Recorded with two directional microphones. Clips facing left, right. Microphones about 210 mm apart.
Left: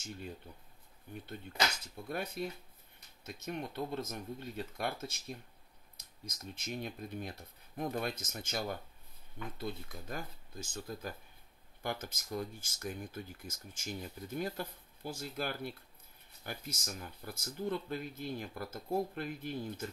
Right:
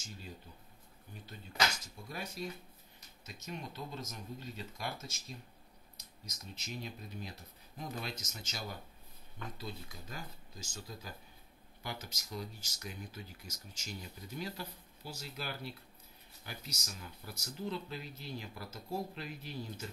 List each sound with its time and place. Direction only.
2.0 s speech: 55° left (ahead or behind)